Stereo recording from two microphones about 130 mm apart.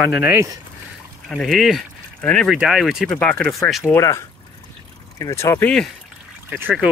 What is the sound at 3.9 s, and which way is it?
Speech, 25° left (ahead or behind).